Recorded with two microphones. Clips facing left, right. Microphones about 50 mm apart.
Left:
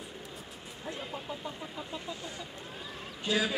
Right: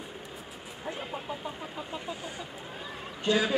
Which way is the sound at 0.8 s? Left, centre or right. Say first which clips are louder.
Right 3 dB; centre.